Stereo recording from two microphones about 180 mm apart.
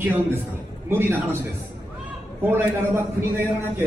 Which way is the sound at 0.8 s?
15° right (ahead or behind).